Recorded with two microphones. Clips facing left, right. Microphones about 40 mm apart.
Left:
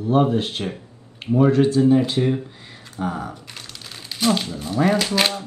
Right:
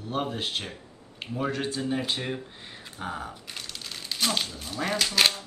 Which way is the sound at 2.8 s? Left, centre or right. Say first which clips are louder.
Left 8 dB; centre.